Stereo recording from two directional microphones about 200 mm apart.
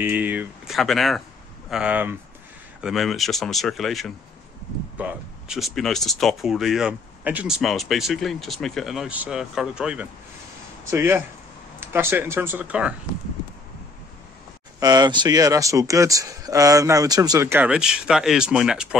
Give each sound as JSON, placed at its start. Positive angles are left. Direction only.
{"t": 0.0, "sound": "speech", "side_deg": -10}
{"t": 14.8, "sound": "speech", "side_deg": -20}